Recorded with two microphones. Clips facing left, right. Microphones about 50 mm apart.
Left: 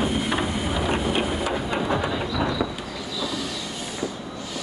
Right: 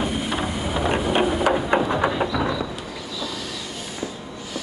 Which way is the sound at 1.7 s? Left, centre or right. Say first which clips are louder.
Right 7 dB; right.